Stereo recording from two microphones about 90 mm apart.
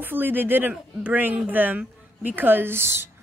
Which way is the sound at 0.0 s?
20° right (ahead or behind).